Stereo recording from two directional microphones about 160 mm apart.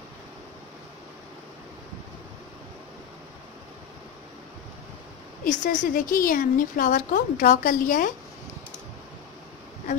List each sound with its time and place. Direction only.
5.4 s a woman's voice: 55° left (ahead or behind)